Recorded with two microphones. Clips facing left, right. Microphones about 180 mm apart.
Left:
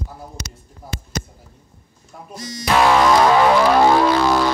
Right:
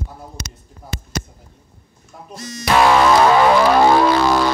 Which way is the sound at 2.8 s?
70° right (ahead or behind).